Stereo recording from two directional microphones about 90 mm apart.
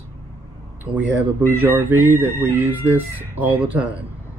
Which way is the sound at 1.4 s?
25° right (ahead or behind).